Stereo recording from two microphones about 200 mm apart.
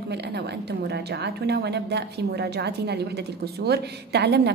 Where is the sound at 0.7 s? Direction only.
55° right (ahead or behind).